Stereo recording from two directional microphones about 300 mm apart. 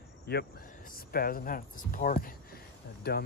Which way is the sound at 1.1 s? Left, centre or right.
Left.